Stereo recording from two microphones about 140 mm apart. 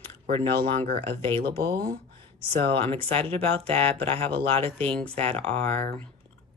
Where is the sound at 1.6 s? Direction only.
90° right.